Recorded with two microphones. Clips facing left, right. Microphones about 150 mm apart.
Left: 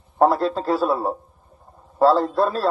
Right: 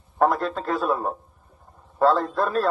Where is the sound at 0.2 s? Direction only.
30° left (ahead or behind).